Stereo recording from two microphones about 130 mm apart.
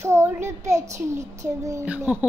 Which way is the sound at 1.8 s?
10° right (ahead or behind).